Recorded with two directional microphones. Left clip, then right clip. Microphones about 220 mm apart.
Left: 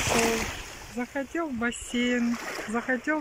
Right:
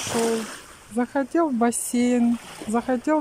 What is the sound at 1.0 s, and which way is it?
Speech, 20° right (ahead or behind).